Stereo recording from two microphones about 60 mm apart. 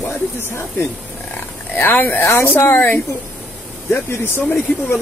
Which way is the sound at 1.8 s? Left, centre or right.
Left.